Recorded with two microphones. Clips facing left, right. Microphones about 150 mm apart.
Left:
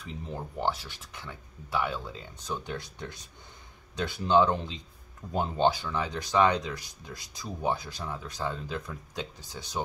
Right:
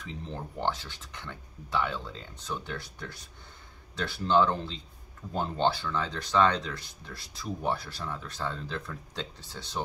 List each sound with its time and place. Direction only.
0.3 s speech: 10° left (ahead or behind)